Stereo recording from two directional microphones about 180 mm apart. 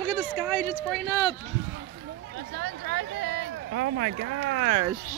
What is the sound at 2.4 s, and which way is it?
Speech, 80° right.